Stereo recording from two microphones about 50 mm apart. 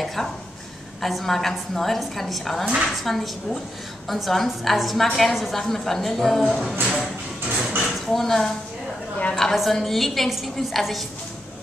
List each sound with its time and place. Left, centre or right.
0.0 s a sound: centre
1.0 s a woman's voice: centre
2.6 s a woman's voice: centre
3.0 s a woman's voice: centre
6.7 s speech: right
7.9 s a woman's voice: centre